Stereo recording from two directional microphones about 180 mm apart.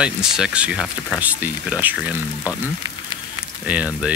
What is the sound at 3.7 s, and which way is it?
Speech, 5° right (ahead or behind).